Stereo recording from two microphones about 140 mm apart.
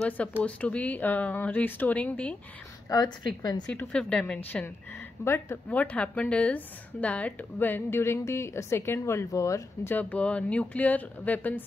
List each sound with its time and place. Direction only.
0.4 s a woman's voice: 10° left (ahead or behind)
2.9 s a woman's voice: 25° left (ahead or behind)
3.6 s a woman's voice: 5° left (ahead or behind)